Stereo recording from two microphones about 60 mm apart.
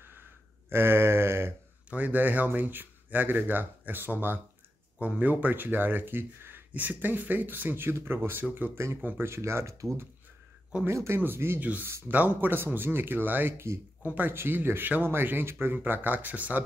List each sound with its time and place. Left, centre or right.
0.7 s a sound: right
1.9 s speech: right
8.8 s speech: right
11.1 s speech: right
11.6 s speech: right